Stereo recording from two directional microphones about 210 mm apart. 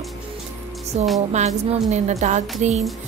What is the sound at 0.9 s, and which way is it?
Music, 30° right (ahead or behind).